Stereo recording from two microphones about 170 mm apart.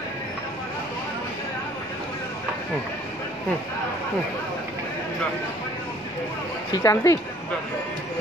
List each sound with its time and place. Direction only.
6.7 s speech: 20° left (ahead or behind)